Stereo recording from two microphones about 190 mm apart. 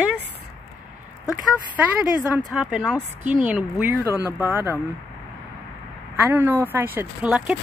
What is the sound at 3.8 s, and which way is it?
Speech, 10° right (ahead or behind).